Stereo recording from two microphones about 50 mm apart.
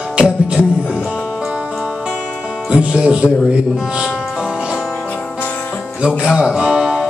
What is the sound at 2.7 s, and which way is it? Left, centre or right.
Music, right.